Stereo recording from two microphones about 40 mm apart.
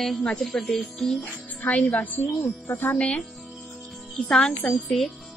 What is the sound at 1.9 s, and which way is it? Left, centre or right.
Speech, left.